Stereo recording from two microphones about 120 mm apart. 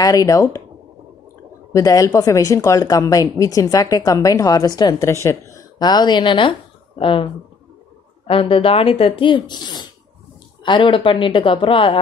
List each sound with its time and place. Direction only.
0.0 s speech: 30° left (ahead or behind)
1.7 s a woman's voice: 30° left (ahead or behind)
5.0 s a woman's voice: 25° left (ahead or behind); by 7.2 s 45° left (ahead or behind)
8.3 s speech: 50° left (ahead or behind)